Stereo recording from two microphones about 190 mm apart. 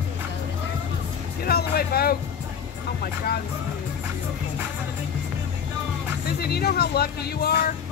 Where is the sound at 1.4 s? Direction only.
55° left (ahead or behind).